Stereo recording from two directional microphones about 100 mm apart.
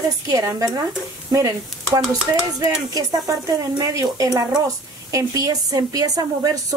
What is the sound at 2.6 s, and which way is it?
Speech, 35° right (ahead or behind).